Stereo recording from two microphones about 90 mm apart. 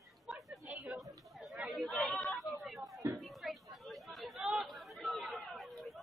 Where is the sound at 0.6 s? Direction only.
15° right (ahead or behind).